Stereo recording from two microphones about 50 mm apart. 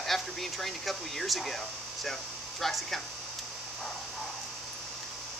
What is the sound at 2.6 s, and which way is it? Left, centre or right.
Speech, centre.